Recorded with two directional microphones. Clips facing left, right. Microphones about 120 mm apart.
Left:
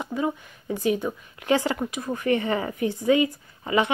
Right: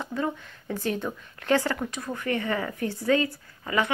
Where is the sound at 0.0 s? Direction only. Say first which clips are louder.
Left 2 dB; 10° left (ahead or behind).